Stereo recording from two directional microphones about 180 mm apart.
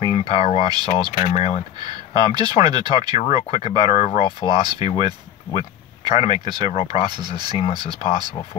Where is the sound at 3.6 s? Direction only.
35° left (ahead or behind).